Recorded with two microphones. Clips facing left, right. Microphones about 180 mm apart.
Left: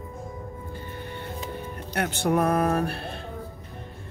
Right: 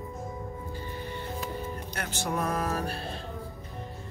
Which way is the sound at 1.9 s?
60° left (ahead or behind).